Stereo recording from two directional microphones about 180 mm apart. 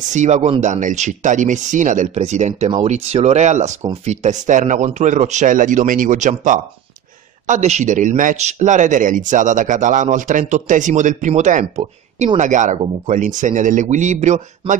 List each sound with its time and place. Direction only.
0.1 s speech: 40° right (ahead or behind)